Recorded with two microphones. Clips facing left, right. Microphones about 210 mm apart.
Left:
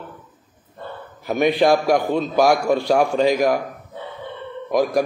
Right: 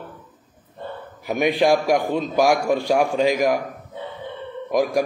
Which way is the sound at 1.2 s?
15° right (ahead or behind).